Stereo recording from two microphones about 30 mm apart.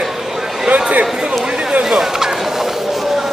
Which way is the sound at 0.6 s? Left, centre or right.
Right.